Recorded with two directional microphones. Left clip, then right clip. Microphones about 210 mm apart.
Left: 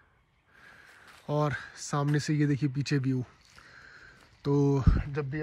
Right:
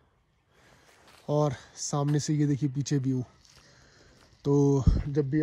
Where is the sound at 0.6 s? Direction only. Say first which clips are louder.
Left 4 dB; 30° right (ahead or behind).